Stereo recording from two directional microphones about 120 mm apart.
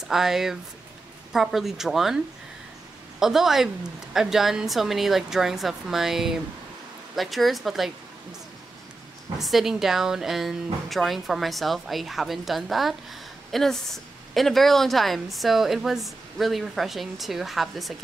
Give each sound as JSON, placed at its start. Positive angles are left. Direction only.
{"t": 0.1, "sound": "a woman's voice", "side_deg": -5}
{"t": 3.2, "sound": "a woman's voice", "side_deg": -5}
{"t": 9.4, "sound": "a woman's voice", "side_deg": 0}